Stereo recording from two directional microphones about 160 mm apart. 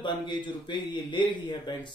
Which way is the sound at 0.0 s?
30° left (ahead or behind).